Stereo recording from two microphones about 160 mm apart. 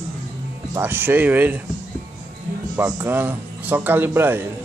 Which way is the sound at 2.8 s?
15° right (ahead or behind).